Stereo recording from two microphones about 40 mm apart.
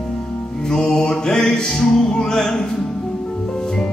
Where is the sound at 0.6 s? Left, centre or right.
Centre.